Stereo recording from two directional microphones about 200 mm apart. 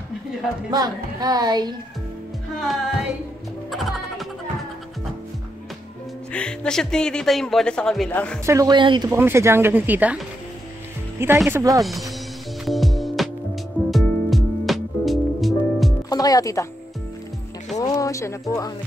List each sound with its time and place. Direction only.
0.7 s speech: 20° right (ahead or behind)
2.6 s music: centre (ahead or behind)
6.3 s speech: 5° left (ahead or behind)
8.5 s speech: 20° right (ahead or behind)
9.1 s speech: 10° right (ahead or behind)
11.1 s speech: 10° right (ahead or behind)
11.8 s speech: centre (ahead or behind)
12.6 s music: centre (ahead or behind)
16.1 s music: 20° left (ahead or behind)
17.7 s speech: 15° left (ahead or behind)